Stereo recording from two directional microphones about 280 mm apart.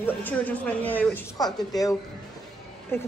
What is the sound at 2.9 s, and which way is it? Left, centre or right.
Speech, centre.